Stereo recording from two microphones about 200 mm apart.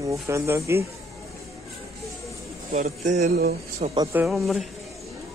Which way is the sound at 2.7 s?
35° right (ahead or behind).